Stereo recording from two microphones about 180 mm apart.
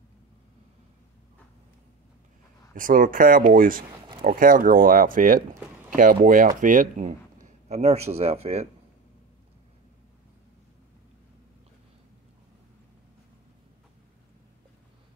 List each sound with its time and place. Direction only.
2.7 s speech: 50° right (ahead or behind)